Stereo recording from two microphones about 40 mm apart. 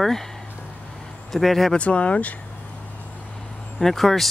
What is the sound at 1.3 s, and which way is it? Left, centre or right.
Speech, centre.